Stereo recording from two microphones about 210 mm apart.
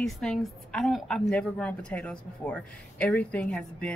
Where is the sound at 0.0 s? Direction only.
Centre (ahead or behind).